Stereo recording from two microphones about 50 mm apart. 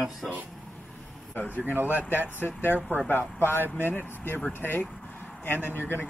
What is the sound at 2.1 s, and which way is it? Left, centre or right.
Speech, left.